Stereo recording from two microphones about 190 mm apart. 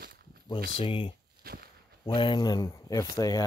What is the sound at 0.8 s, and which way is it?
Speech, 30° left (ahead or behind).